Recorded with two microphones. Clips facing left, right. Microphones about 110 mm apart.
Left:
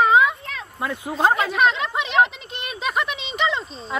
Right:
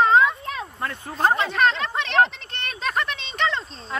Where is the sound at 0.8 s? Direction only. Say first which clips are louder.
Left 3 dB; 10° left (ahead or behind).